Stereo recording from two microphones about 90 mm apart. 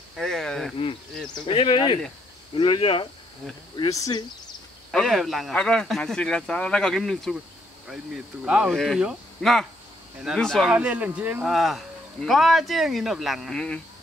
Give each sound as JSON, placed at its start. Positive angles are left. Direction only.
{"t": 0.1, "sound": "speech", "side_deg": 5}
{"t": 1.5, "sound": "speech", "side_deg": 70}
{"t": 2.5, "sound": "speech", "side_deg": 80}
{"t": 3.9, "sound": "speech", "side_deg": 40}
{"t": 4.9, "sound": "speech", "side_deg": 0}
{"t": 5.6, "sound": "speech", "side_deg": 10}
{"t": 7.9, "sound": "speech", "side_deg": -10}
{"t": 8.7, "sound": "speech", "side_deg": 0}
{"t": 10.7, "sound": "speech", "side_deg": -15}
{"t": 11.4, "sound": "speech", "side_deg": 0}